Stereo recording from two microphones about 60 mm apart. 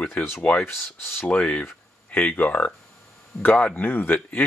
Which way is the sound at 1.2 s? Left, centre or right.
Left.